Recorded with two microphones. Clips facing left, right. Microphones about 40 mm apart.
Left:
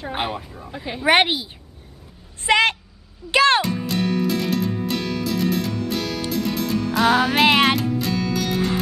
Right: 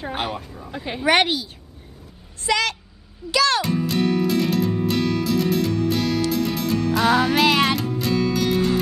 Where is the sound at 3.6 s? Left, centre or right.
Centre.